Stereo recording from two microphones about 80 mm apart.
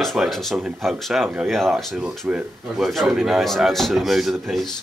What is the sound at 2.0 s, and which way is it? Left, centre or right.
Speech, centre.